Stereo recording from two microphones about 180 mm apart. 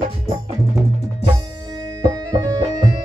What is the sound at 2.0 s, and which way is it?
Music, 20° right (ahead or behind).